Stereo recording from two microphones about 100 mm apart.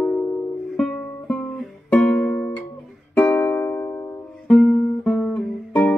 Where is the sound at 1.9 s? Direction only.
15° left (ahead or behind).